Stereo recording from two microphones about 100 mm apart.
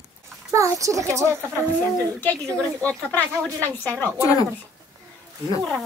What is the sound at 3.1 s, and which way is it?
Speech, 15° left (ahead or behind).